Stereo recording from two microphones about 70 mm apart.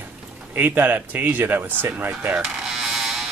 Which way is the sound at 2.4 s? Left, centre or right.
Centre.